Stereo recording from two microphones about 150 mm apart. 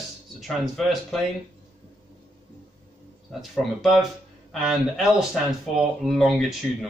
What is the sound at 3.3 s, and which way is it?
A man's voice, centre (ahead or behind).